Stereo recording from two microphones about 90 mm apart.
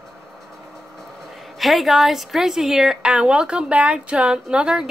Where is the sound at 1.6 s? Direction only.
Centre (ahead or behind).